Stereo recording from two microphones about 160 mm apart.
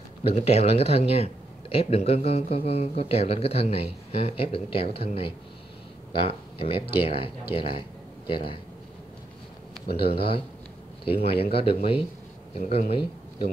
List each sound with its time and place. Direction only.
0.2 s a man's voice: 40° left (ahead or behind)
9.9 s a man's voice: 35° left (ahead or behind)